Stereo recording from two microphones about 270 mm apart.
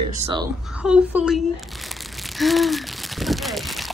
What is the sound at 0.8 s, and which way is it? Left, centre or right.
Speech, centre.